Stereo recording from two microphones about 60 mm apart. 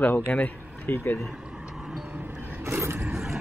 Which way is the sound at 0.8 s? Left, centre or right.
Left.